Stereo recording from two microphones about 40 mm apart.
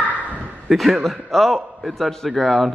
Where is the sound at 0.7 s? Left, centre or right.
Centre.